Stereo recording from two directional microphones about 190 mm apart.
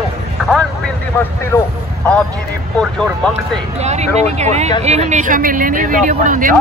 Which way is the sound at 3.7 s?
35° right (ahead or behind).